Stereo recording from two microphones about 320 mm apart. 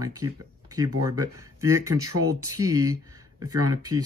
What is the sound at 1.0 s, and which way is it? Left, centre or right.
Speech, centre.